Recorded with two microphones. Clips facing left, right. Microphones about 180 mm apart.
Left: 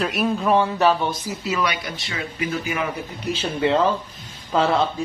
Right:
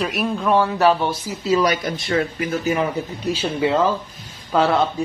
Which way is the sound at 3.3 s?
5° right (ahead or behind).